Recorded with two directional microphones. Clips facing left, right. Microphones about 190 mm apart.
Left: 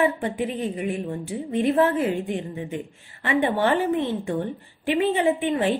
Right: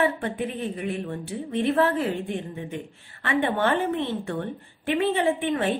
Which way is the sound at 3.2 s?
15° left (ahead or behind).